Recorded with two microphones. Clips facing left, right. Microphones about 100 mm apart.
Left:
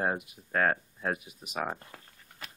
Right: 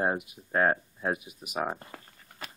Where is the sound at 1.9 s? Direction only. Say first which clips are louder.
Right 4 dB; centre (ahead or behind).